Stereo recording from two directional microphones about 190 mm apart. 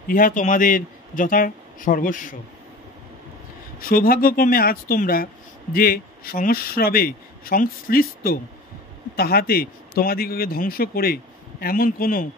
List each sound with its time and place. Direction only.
0.1 s speech: 45° left (ahead or behind)
3.8 s speech: 50° left (ahead or behind)